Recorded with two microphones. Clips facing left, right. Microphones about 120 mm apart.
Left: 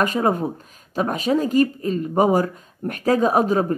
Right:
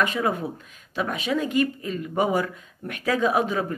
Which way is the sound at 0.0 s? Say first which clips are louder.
Left 4 dB; 40° left (ahead or behind).